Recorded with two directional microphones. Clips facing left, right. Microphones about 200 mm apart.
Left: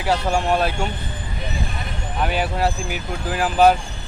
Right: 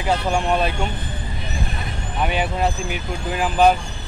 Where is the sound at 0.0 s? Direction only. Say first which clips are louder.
Even; 5° left (ahead or behind).